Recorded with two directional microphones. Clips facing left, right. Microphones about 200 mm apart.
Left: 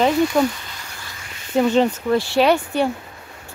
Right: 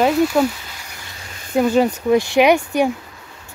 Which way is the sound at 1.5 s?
10° right (ahead or behind).